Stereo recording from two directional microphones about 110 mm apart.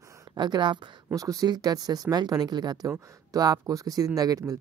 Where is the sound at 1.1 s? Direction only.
35° right (ahead or behind).